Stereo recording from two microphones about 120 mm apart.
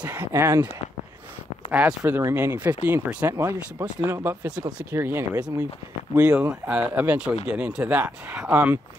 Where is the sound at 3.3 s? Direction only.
25° right (ahead or behind).